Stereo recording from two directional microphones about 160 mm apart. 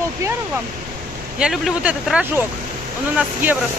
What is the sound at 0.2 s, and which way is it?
Waterfall, 20° right (ahead or behind).